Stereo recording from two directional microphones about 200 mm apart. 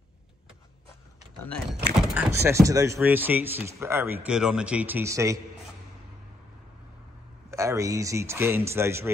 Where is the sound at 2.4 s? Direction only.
15° right (ahead or behind).